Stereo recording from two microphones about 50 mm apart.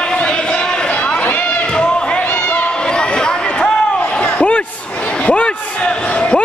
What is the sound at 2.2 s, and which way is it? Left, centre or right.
Run, left.